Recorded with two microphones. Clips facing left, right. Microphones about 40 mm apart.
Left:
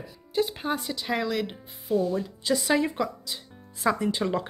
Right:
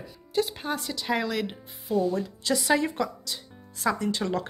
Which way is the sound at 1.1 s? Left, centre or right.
Centre.